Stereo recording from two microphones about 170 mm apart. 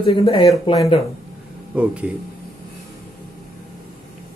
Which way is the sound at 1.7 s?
5° right (ahead or behind).